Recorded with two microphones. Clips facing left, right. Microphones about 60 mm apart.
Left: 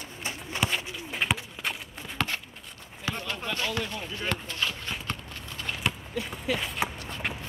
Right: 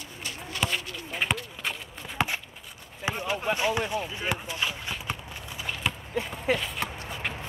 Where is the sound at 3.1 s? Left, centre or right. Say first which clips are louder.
Right 5 dB; right.